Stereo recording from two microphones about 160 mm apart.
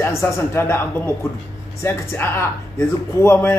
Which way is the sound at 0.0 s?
15° left (ahead or behind).